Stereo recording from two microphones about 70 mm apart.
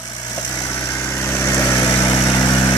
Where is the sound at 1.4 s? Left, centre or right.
Left.